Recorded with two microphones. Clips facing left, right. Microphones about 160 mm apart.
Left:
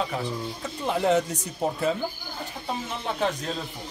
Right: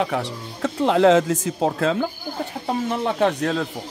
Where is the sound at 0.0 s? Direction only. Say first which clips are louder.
Right 4 dB; 75° right (ahead or behind).